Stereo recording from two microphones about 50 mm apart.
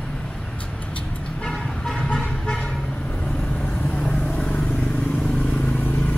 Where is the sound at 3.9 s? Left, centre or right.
Left.